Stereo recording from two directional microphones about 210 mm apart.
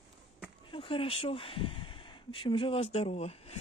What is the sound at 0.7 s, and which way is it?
Speech, 25° left (ahead or behind).